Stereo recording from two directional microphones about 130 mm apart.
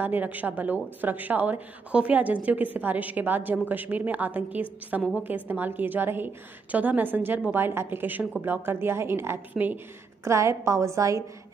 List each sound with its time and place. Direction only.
0.0 s a woman's voice: 15° right (ahead or behind)